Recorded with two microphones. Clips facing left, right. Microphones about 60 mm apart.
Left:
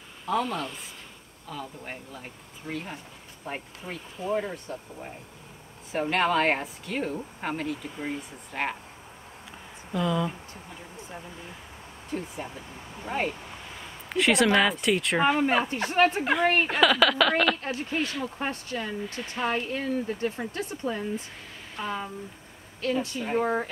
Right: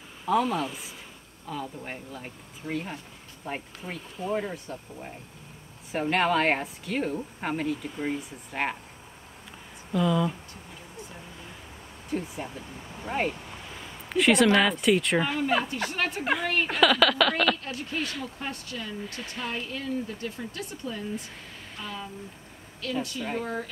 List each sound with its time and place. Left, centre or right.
0.2 s speech: centre
9.9 s speech: centre
12.1 s speech: centre
15.1 s speech: left
16.6 s speech: centre
17.6 s speech: left
18.2 s speech: left
19.1 s speech: centre
19.5 s speech: left